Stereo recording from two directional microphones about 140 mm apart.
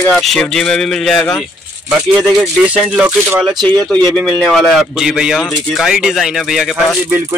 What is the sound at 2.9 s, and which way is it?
Speech, 15° right (ahead or behind).